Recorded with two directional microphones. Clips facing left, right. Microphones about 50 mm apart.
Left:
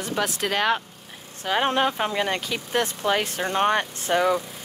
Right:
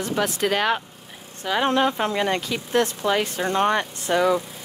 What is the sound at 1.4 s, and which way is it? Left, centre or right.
Speech, left.